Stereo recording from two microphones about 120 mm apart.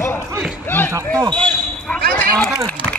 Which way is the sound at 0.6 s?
15° left (ahead or behind).